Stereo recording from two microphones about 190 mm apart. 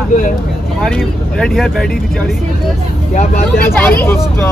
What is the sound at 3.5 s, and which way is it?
Speech, 10° left (ahead or behind).